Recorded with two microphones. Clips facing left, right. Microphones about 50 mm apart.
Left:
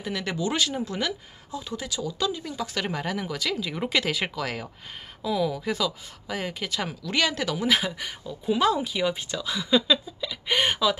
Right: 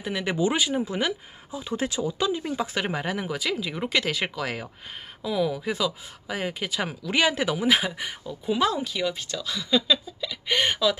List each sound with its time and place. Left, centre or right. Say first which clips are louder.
0.0 s speech: right 3 dB; centre
1.8 s speech: right 3 dB; right; by 8.8 s centre
8.8 s speech: left 1 dB; centre